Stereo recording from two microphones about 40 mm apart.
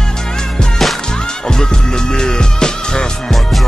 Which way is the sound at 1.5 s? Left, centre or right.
Centre.